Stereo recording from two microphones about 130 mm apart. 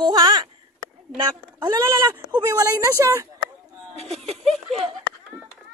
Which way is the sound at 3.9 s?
50° right (ahead or behind).